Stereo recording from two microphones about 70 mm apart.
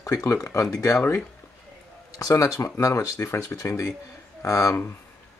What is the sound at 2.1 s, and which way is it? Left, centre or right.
Speech, left.